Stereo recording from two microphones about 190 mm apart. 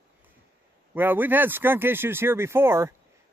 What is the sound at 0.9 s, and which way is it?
Speech, 10° right (ahead or behind).